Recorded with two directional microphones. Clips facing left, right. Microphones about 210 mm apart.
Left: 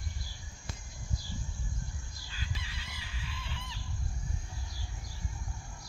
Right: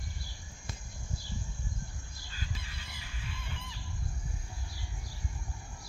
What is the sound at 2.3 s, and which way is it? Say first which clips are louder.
Chicken: even; 45° right (ahead or behind).